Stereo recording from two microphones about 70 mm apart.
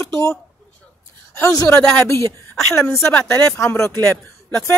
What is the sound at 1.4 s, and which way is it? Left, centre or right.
Speech, left.